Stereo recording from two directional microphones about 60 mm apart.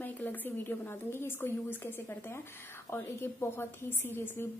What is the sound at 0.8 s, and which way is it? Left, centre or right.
A woman's voice, left.